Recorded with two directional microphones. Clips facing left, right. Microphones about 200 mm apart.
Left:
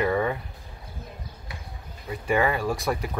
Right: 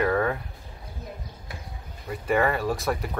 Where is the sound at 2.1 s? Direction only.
Centre (ahead or behind).